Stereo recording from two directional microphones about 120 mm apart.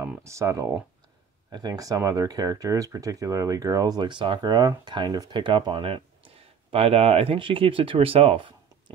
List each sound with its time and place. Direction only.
0.2 s speech: 25° right (ahead or behind); by 8.9 s 45° right (ahead or behind)